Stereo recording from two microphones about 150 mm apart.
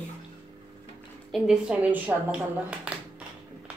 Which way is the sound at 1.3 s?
5° right (ahead or behind).